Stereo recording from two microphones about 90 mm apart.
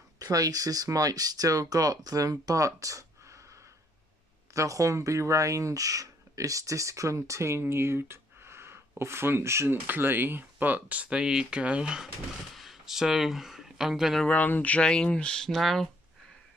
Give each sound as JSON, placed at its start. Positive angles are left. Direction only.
{"t": 0.2, "sound": "speech", "side_deg": -40}
{"t": 4.6, "sound": "speech", "side_deg": -40}
{"t": 14.2, "sound": "speech", "side_deg": 15}